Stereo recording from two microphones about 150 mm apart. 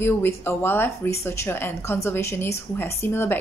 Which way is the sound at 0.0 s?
15° left (ahead or behind).